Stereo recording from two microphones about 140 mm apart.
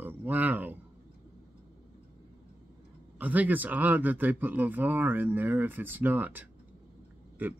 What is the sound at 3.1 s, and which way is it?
Speech, 10° right (ahead or behind).